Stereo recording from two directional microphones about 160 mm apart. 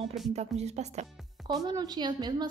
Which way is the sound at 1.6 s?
25° right (ahead or behind).